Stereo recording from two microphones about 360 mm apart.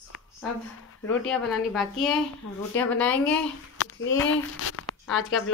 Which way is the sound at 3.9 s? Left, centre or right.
Left.